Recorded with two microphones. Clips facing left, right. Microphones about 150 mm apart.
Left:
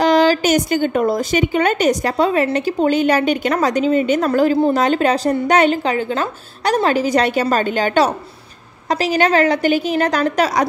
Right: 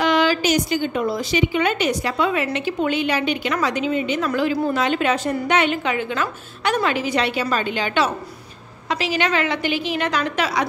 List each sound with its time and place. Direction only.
0.0 s a woman's voice: 40° left (ahead or behind)